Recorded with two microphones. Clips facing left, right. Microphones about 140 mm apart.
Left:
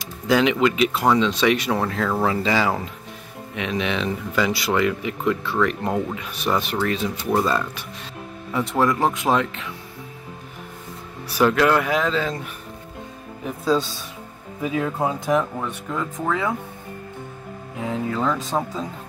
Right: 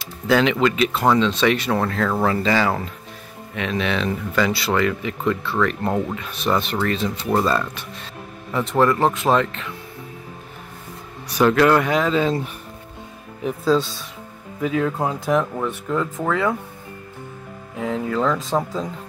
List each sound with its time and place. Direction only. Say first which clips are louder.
0.0 s speech: right 1 dB; 10° left (ahead or behind)
11.2 s speech: right 2 dB; 5° left (ahead or behind)
12.1 s speech: right 4 dB; 20° right (ahead or behind)
14.6 s speech: right 3 dB; 15° left (ahead or behind)
15.0 s speech: right 1 dB; centre (ahead or behind)
18.1 s speech: right 4 dB; 5° left (ahead or behind)